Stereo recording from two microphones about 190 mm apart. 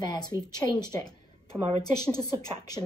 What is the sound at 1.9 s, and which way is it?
Speech, 20° left (ahead or behind).